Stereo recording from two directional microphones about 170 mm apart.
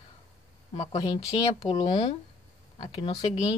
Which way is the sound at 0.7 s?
35° left (ahead or behind).